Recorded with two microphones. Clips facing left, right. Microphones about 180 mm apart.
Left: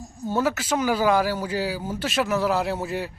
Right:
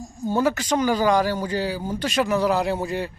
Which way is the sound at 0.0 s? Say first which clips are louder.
Right 2 dB; centre (ahead or behind).